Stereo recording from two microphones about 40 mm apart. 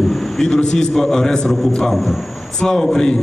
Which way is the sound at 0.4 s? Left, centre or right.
Centre.